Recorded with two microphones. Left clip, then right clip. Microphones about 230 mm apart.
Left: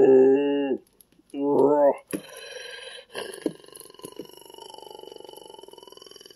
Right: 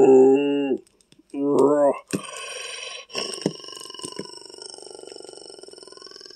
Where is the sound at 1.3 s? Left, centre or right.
Centre.